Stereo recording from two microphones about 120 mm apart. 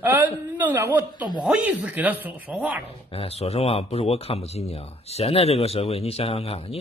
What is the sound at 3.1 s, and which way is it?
Speech, 55° left (ahead or behind).